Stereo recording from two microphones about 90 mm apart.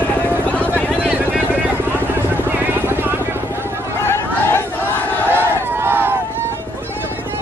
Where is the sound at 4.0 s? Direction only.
25° left (ahead or behind).